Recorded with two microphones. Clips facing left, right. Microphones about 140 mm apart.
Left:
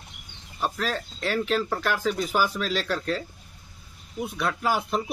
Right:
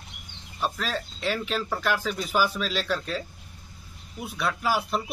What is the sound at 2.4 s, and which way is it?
Speech, 10° right (ahead or behind).